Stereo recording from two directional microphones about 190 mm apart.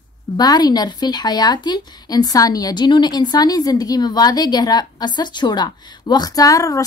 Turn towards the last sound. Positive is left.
turn(degrees=15)  # may be behind; listen again after turning